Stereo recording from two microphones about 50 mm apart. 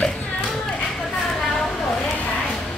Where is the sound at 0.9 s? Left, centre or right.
Centre.